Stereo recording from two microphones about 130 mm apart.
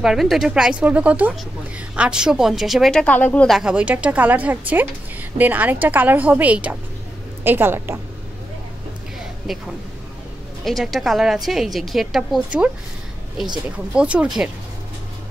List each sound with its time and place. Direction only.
0.0 s a woman's voice: 5° right (ahead or behind)
3.4 s speech: 5° right (ahead or behind)
9.5 s a woman's voice: centre (ahead or behind)